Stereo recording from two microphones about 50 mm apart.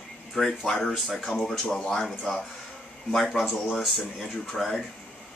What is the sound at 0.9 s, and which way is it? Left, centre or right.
Speech, centre.